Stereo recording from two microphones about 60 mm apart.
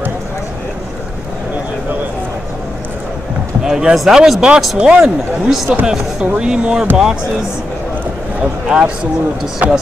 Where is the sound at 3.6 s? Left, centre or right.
Centre.